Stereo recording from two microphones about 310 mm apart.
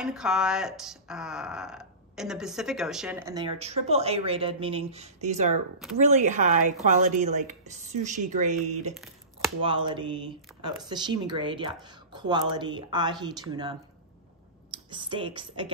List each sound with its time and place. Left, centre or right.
0.0 s speech: centre; by 8.7 s right
8.9 s a sound: centre
9.8 s a woman's voice: centre